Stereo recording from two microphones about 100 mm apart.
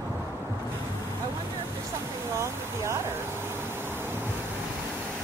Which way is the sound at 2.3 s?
25° right (ahead or behind).